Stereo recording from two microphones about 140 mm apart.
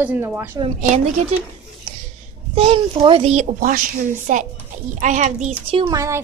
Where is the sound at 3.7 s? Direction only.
65° right (ahead or behind).